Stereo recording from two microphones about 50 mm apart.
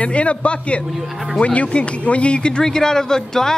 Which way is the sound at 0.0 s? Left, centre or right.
Left.